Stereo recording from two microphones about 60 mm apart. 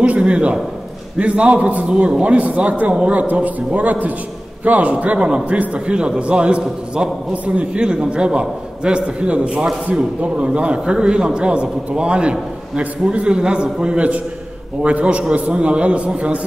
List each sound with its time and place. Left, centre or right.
0.0 s a man's voice: right